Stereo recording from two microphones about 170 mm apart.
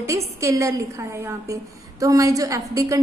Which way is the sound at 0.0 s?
15° right (ahead or behind).